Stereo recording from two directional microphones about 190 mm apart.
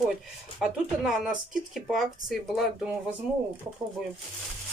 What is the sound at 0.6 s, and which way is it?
Speech, centre (ahead or behind).